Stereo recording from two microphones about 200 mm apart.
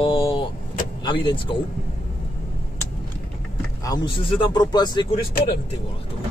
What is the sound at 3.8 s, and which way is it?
Speech, 20° left (ahead or behind).